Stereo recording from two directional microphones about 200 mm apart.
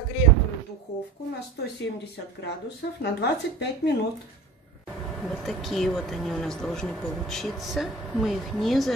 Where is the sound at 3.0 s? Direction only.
55° left (ahead or behind).